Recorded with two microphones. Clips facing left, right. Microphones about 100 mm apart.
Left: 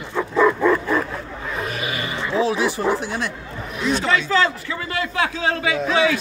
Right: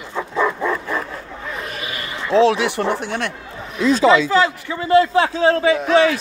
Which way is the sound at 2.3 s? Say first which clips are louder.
Right 6 dB; 80° right.